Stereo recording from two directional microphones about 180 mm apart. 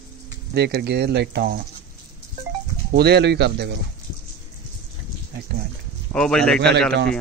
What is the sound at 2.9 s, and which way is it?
Speech, 65° right (ahead or behind).